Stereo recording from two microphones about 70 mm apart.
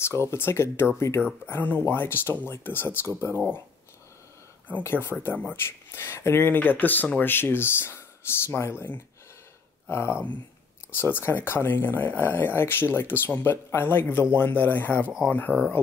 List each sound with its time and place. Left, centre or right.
0.0 s speech: left
1.4 s speech: left
4.8 s speech: left